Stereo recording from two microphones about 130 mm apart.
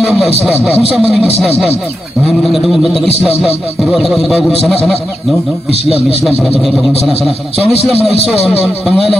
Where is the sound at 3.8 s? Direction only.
Centre (ahead or behind).